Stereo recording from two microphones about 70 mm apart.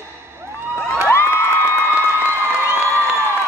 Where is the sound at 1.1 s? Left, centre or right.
Left.